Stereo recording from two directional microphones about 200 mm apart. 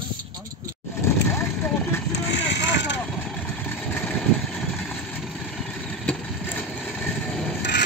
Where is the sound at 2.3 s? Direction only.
60° left (ahead or behind).